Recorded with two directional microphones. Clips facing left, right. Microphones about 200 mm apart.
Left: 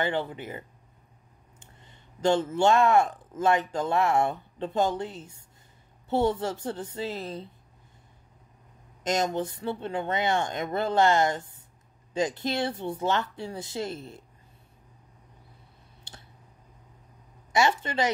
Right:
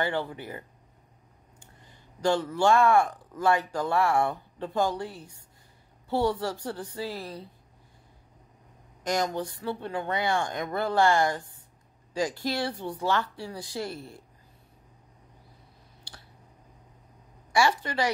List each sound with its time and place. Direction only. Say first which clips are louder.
0.0 s speech: left 1 dB; 20° left (ahead or behind)
9.0 s speech: left 1 dB; 20° left (ahead or behind)
16.0 s clicking: left 1 dB; 20° left (ahead or behind)
17.5 s speech: even; 20° left (ahead or behind)